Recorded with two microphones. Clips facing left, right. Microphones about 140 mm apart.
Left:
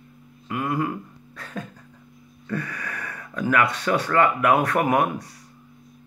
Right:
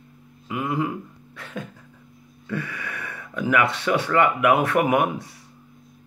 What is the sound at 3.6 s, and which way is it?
Speech, 25° right (ahead or behind).